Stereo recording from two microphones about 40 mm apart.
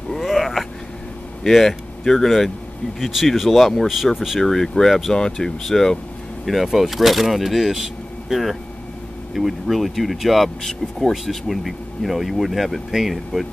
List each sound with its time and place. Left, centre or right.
0.3 s a sound: centre
1.4 s speech: centre
4.4 s speech: centre
6.4 s speech: centre